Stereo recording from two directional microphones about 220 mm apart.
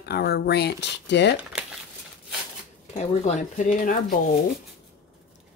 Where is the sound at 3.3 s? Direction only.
35° left (ahead or behind).